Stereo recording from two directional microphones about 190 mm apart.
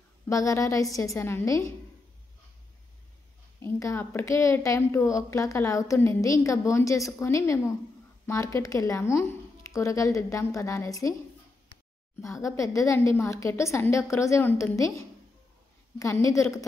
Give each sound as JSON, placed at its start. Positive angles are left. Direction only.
{"t": 0.3, "sound": "a woman's voice", "side_deg": 15}
{"t": 3.6, "sound": "a woman's voice", "side_deg": 15}
{"t": 12.2, "sound": "a woman's voice", "side_deg": 15}